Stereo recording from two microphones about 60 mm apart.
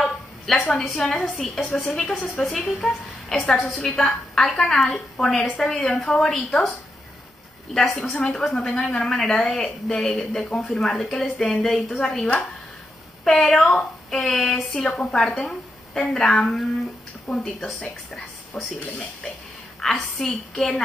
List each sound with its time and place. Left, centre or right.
0.5 s a woman's voice: centre
7.7 s a woman's voice: centre
16.7 s a sound: centre
19.8 s a woman's voice: centre